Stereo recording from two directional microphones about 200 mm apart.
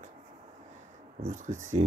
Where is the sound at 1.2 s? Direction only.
40° right (ahead or behind).